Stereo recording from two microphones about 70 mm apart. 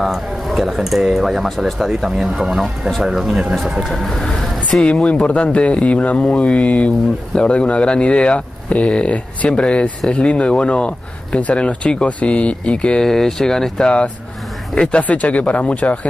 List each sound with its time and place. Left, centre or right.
0.0 s speech: centre
4.7 s a man's voice: centre